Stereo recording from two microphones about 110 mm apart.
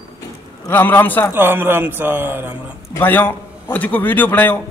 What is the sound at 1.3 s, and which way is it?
Speech, 20° right (ahead or behind).